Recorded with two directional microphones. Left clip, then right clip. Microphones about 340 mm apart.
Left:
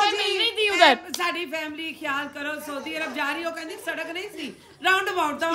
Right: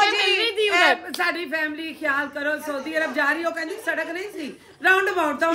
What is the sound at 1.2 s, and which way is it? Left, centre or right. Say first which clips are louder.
A man's voice: right 4 dB; centre.